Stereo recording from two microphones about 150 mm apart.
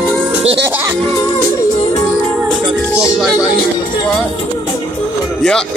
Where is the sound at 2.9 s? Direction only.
20° left (ahead or behind).